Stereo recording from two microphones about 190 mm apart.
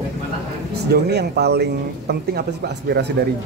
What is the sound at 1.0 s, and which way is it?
Speech, 60° right (ahead or behind).